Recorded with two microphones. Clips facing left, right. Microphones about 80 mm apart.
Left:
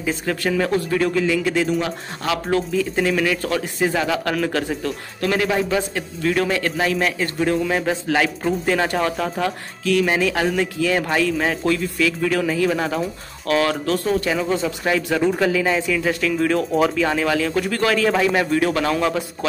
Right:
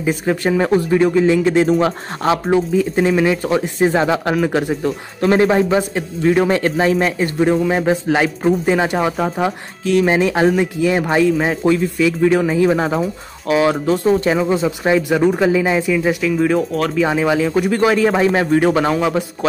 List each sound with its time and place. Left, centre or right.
0.0 s speech: centre; by 2.3 s right
2.3 s speech: right